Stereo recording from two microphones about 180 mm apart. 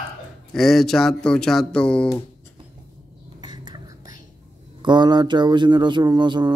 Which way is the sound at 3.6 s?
20° right (ahead or behind).